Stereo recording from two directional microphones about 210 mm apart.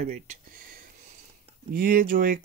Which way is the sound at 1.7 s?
45° right (ahead or behind).